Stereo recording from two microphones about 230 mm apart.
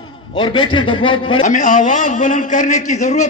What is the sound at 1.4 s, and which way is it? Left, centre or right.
A man's voice, left.